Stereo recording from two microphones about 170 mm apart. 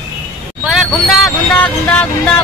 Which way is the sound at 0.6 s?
Centre (ahead or behind).